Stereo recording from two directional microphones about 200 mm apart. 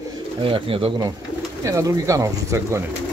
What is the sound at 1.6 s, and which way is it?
Speech, 15° right (ahead or behind).